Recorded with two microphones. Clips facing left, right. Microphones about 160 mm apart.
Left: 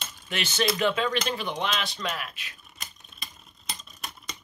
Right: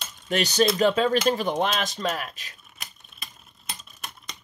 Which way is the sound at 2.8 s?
Centre (ahead or behind).